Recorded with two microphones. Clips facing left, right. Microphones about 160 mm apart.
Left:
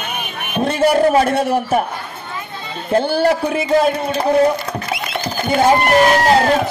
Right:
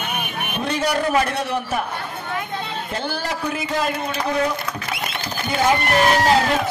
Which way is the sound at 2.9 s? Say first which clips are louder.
Left 15 dB; 55° left (ahead or behind).